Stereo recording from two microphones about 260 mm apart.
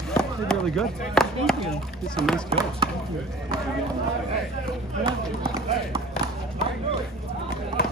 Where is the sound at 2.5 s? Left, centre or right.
Centre.